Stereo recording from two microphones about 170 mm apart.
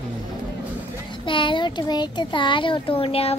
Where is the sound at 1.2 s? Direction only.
30° left (ahead or behind).